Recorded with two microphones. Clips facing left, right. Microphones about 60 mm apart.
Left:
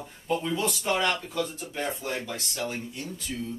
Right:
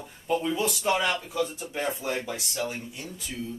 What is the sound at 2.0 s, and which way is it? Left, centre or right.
Speech, right.